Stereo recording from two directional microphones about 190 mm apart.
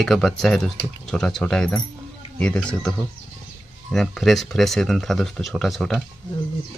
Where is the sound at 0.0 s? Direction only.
Centre (ahead or behind).